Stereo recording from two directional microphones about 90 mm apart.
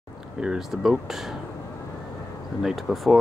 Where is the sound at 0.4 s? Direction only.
5° right (ahead or behind).